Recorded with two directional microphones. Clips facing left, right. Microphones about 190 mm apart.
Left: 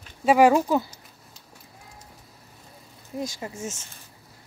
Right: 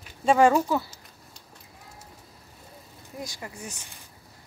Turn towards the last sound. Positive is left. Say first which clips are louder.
# even
turn(degrees=-15)  # may be behind; listen again after turning